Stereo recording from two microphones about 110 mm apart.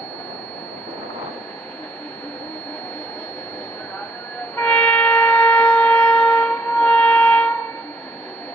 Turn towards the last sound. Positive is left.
turn(degrees=15)  # may be behind; listen again after turning